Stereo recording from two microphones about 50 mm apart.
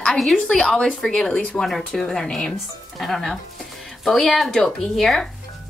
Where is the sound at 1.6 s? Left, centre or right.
Centre.